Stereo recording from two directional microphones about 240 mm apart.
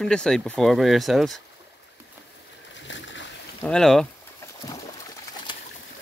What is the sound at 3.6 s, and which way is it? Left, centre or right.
Speech, centre.